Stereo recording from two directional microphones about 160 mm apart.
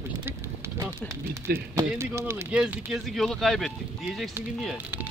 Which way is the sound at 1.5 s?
70° right (ahead or behind).